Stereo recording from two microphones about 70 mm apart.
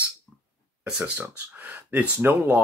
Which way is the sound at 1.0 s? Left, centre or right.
Right.